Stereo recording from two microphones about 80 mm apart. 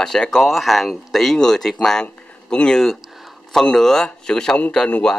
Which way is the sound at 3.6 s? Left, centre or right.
Centre.